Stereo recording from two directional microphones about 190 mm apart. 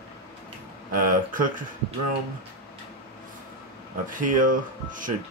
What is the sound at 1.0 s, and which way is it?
Speech, 45° right (ahead or behind).